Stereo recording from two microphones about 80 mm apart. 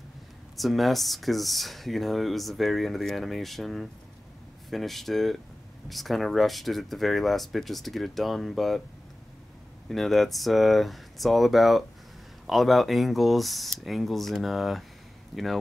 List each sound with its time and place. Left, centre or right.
0.6 s speech: centre
9.8 s speech: centre